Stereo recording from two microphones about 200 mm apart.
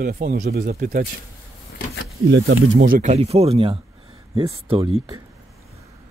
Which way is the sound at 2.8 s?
40° right (ahead or behind).